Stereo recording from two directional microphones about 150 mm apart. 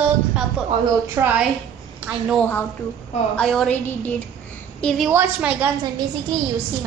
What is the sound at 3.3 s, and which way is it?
A child's voice, 5° left (ahead or behind).